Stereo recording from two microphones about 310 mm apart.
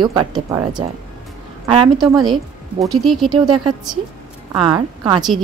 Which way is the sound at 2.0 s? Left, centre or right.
Centre.